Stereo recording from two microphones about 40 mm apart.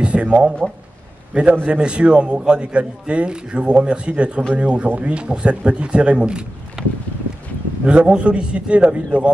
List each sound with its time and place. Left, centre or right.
0.0 s a man's voice: right
7.8 s a man's voice: right